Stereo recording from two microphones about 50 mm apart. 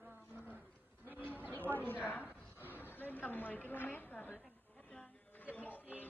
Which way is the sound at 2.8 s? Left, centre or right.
Left.